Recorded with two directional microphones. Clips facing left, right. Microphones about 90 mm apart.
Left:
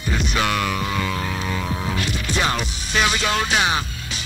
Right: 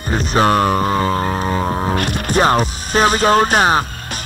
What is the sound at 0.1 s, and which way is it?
Music, 40° right (ahead or behind).